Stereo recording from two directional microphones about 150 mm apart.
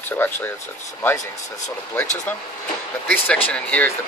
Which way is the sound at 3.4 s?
10° left (ahead or behind).